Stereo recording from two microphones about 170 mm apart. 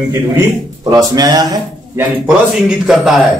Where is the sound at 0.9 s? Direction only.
25° right (ahead or behind).